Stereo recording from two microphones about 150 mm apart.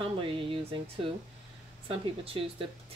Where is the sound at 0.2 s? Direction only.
35° right (ahead or behind).